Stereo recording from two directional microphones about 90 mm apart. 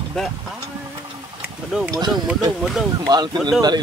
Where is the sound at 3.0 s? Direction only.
50° right (ahead or behind).